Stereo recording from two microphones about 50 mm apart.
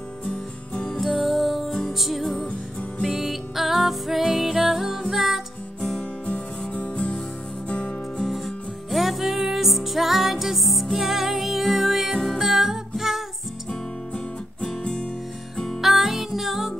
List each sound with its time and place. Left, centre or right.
0.2 s music: centre
1.0 s music: centre
5.8 s music: centre
8.2 s music: centre
13.7 s music: centre
15.8 s music: centre